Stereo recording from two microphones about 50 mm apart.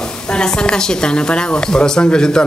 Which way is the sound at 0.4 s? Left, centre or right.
Centre.